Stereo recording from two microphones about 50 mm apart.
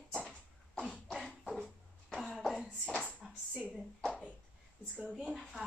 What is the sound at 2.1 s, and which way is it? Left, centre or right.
Cough, centre.